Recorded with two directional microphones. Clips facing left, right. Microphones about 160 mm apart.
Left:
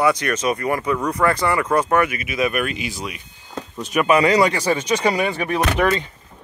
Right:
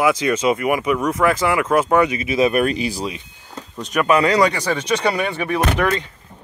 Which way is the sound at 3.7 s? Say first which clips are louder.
Even; 10° left (ahead or behind).